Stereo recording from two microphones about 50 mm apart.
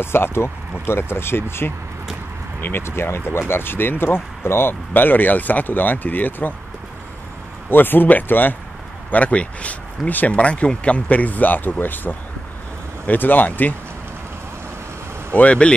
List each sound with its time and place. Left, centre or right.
0.0 s speech: left
7.7 s speech: left
15.3 s speech: left